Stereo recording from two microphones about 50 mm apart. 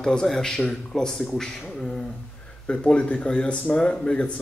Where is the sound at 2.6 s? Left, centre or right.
Left.